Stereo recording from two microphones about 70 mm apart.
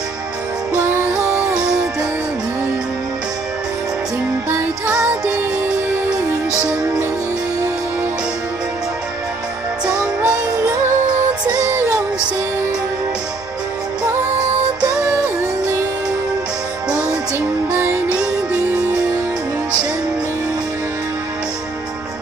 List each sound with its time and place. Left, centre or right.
1.1 s music: centre
4.8 s music: centre
9.8 s music: centre
14.8 s music: centre
17.6 s music: right